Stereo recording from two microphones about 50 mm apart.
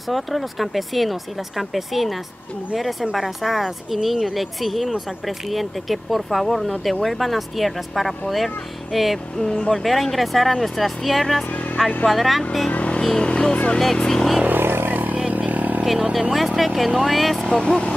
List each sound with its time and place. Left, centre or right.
0.1 s speech: centre
9.4 s speech: centre
9.7 s speech: centre
12.7 s vehicle: left
13.0 s speech: centre
14.4 s a sound: right
15.3 s vehicle: right
16.1 s speech: centre
17.5 s speech: centre